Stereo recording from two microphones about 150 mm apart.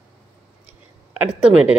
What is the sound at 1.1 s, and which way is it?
Speech, 10° right (ahead or behind).